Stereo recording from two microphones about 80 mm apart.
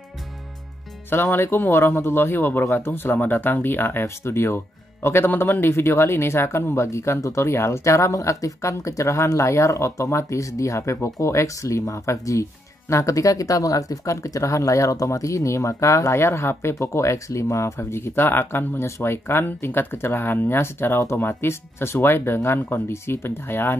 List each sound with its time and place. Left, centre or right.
1.1 s speech: left